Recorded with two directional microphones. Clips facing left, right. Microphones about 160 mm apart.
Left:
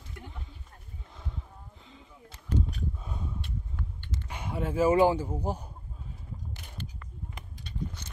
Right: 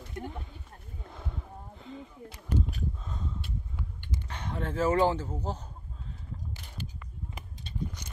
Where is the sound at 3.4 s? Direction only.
10° right (ahead or behind).